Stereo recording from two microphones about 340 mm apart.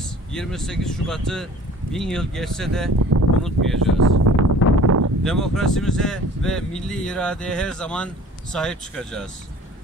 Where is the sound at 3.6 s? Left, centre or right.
Right.